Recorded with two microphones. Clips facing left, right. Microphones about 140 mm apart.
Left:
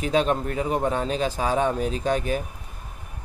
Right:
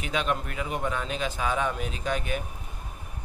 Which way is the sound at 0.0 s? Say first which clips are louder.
Left 7 dB; 35° left (ahead or behind).